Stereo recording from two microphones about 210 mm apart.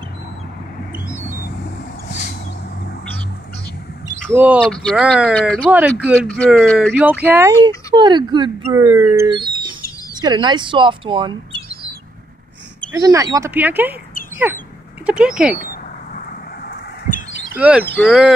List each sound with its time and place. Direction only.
2.0 s a sound: 50° left (ahead or behind)
4.3 s speech: 10° right (ahead or behind)
4.6 s speech: 5° left (ahead or behind)
5.7 s speech: 5° right (ahead or behind)
6.2 s speech: 5° left (ahead or behind)
6.9 s speech: 5° right (ahead or behind)
7.6 s speech: 20° right (ahead or behind)
9.4 s bird: 20° right (ahead or behind)
10.2 s speech: 20° right (ahead or behind)
12.9 s speech: 15° right (ahead or behind)
16.6 s a sound: 50° left (ahead or behind)
17.6 s speech: 5° right (ahead or behind)